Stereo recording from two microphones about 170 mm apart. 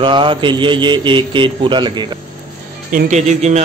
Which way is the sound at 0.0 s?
30° right (ahead or behind).